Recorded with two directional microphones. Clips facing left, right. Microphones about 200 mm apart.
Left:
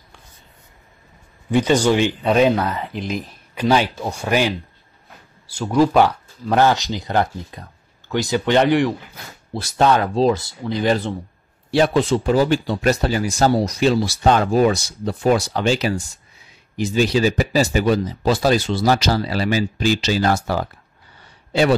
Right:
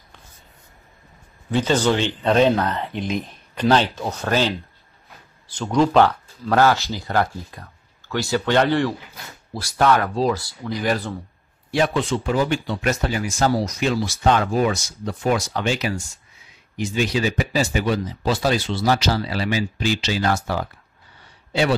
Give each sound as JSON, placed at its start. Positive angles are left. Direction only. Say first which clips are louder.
{"t": 1.5, "sound": "speech", "louder": "left 3 dB", "side_deg": 15}
{"t": 11.7, "sound": "speech", "louder": "left 4 dB", "side_deg": 35}